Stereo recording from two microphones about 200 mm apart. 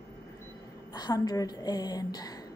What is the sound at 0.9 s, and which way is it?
A woman's voice, 20° left (ahead or behind).